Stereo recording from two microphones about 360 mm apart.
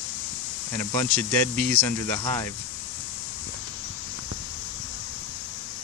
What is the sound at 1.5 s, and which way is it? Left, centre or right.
Speech, centre.